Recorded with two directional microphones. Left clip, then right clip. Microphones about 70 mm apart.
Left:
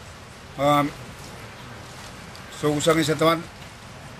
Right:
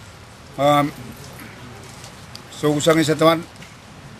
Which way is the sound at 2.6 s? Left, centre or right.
Centre.